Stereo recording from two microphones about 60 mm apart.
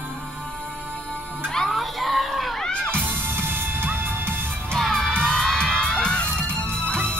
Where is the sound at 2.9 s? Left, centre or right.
Right.